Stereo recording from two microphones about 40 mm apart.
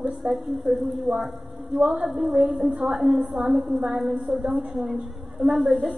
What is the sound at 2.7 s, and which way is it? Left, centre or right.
Speech, right.